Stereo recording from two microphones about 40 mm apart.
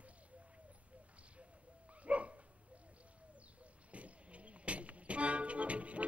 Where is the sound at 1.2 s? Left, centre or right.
Right.